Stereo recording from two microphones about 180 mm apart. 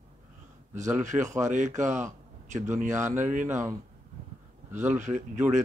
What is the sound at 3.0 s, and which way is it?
Mantra, 45° right (ahead or behind).